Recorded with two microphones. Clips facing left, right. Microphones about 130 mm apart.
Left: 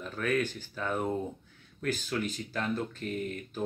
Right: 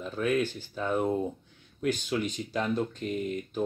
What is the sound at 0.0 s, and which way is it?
Speech, 10° right (ahead or behind).